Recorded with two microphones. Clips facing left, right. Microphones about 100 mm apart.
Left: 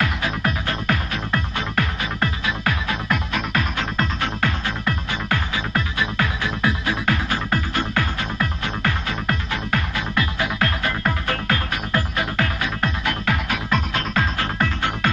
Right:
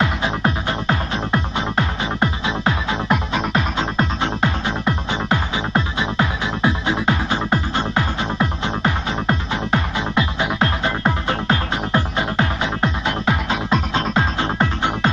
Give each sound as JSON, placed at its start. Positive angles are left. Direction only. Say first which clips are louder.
{"t": 0.0, "sound": "music", "louder": "right 3 dB", "side_deg": -25}